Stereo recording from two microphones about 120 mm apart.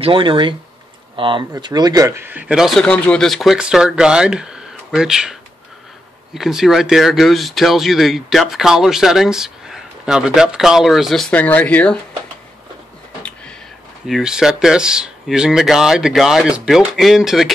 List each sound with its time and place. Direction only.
0.0 s speech: 45° right (ahead or behind); by 11.3 s centre (ahead or behind)
11.3 s speech: 15° left (ahead or behind)
14.0 s speech: 5° right (ahead or behind)